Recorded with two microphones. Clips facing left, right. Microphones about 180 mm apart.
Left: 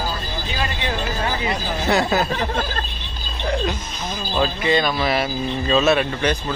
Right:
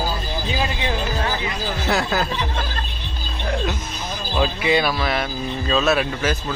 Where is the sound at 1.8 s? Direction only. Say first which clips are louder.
Left 3 dB; centre (ahead or behind).